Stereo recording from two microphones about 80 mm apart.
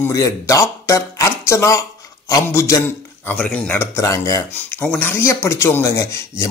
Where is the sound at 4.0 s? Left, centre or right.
Left.